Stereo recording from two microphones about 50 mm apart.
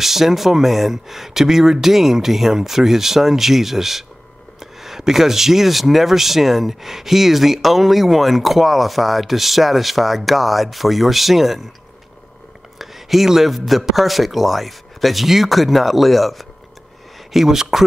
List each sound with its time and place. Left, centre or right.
0.0 s speech: centre
12.7 s speech: centre